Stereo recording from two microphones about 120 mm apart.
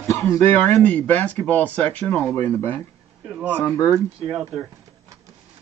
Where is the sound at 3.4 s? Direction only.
15° right (ahead or behind).